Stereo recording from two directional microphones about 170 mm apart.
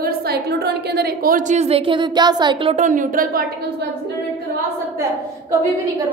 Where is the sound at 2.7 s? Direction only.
50° right (ahead or behind).